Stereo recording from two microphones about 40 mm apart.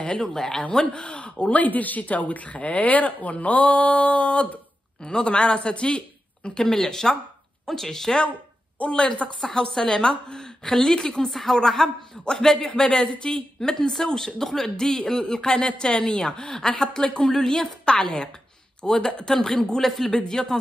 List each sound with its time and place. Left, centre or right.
0.2 s a man's voice: centre
0.7 s a woman's voice: left
8.7 s a woman's voice: left
9.4 s a man's voice: centre
13.6 s a man's voice: centre
19.8 s a man's voice: centre